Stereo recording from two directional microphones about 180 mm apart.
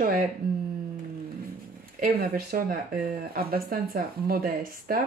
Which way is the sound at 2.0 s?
55° right (ahead or behind).